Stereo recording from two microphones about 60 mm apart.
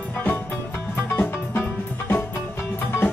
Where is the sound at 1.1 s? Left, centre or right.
Left.